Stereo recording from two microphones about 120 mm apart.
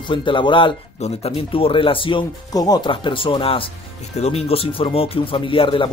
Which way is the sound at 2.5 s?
30° left (ahead or behind).